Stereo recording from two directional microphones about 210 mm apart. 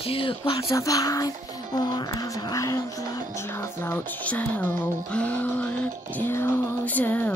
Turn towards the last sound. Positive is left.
turn(degrees=10)  # may be behind; listen again after turning